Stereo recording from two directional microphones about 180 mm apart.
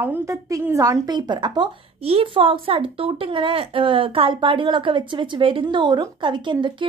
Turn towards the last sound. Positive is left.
turn(degrees=-25)  # may be behind; listen again after turning